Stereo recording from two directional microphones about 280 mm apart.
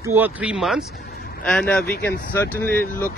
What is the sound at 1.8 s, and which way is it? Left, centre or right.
Speech, left.